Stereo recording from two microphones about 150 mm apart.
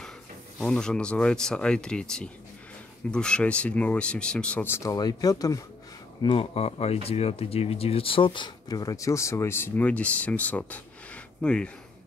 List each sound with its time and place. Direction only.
0.6 s speech: 5° left (ahead or behind); by 5.6 s 25° left (ahead or behind)
6.2 s speech: 35° left (ahead or behind); by 11.7 s 5° left (ahead or behind)